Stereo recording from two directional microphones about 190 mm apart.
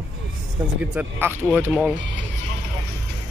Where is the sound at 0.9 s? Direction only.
10° right (ahead or behind).